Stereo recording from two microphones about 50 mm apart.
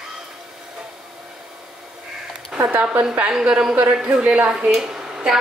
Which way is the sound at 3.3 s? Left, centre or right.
Centre.